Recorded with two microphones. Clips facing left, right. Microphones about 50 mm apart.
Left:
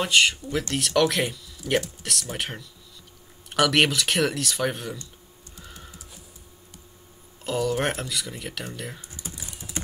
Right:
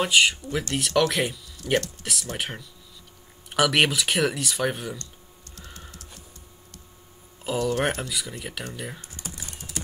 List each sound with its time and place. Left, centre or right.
0.0 s speech: centre
5.6 s sewing machine: centre
7.4 s speech: centre
9.0 s typing: right